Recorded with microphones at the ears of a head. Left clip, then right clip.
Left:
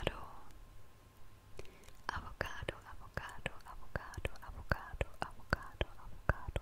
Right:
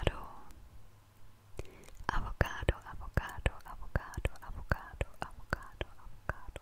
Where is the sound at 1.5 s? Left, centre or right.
Right.